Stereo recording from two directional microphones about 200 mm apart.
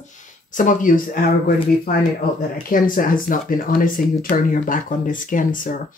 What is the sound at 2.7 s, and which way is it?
Speech, 45° left (ahead or behind).